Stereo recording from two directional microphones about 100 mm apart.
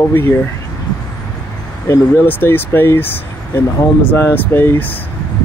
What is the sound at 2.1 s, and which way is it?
Speech, 20° left (ahead or behind).